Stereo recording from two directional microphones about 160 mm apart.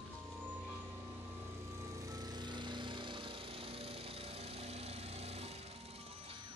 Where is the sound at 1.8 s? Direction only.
20° right (ahead or behind); by 6.3 s 40° right (ahead or behind).